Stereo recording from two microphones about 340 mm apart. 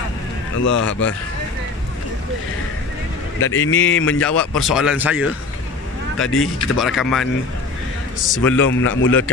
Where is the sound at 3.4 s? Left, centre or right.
Left.